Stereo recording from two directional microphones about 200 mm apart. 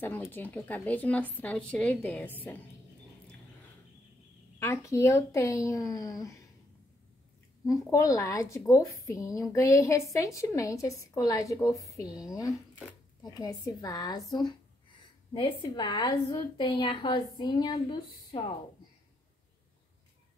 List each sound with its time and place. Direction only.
0.0 s a woman's voice: 10° left (ahead or behind)
4.6 s a woman's voice: 15° left (ahead or behind)
7.6 s a woman's voice: 15° left (ahead or behind)
15.3 s a woman's voice: 25° left (ahead or behind)